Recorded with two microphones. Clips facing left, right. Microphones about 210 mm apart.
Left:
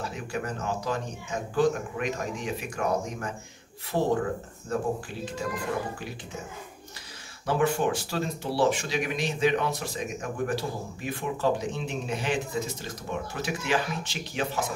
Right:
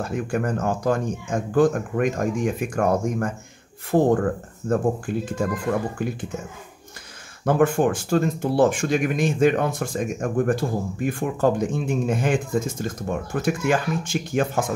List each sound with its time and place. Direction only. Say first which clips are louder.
0.0 s speech: right 8 dB; 50° right (ahead or behind)
7.4 s speech: right 6 dB; 50° right (ahead or behind)